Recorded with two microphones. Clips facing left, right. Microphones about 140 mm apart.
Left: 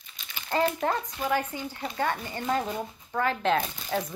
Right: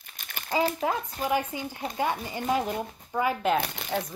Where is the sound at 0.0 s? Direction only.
55° right (ahead or behind).